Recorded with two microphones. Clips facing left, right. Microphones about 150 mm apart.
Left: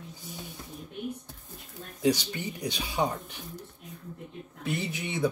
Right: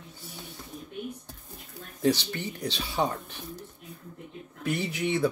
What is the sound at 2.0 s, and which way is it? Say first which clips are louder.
Speech: right 1 dB; 15° left (ahead or behind).